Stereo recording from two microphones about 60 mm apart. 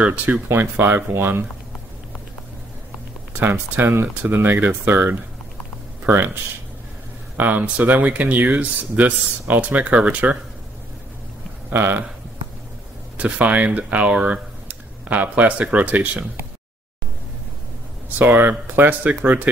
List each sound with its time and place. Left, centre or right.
0.0 s speech: right
0.3 s speech: right
3.3 s speech: right
7.3 s speech: right
11.7 s speech: right
13.2 s speech: right
18.1 s speech: right